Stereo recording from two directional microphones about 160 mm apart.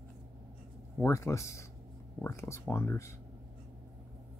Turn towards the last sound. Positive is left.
turn(degrees=15)  # may be behind; listen again after turning